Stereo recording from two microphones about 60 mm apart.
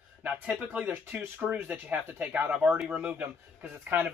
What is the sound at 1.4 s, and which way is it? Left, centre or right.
Speech, right.